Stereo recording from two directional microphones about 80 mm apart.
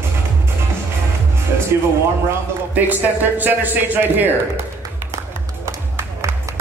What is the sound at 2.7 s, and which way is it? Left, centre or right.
Speech, right.